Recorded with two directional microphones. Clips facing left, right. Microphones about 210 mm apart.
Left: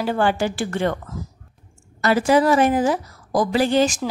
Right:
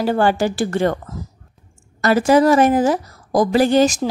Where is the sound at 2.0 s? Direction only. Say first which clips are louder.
Right 3 dB; 45° right (ahead or behind).